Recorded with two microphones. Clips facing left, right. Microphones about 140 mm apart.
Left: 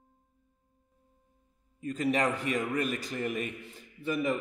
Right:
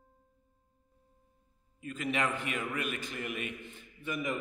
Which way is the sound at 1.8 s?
35° left (ahead or behind).